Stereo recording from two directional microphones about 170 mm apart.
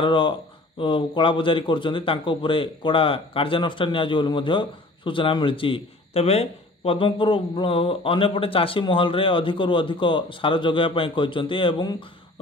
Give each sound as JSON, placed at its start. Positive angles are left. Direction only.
{"t": 0.0, "sound": "a man's voice", "side_deg": 30}